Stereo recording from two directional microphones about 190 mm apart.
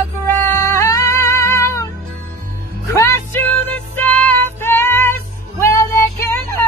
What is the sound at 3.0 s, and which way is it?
Music, 15° left (ahead or behind).